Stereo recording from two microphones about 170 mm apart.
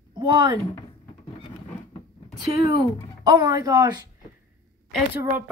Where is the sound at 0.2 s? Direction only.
25° right (ahead or behind).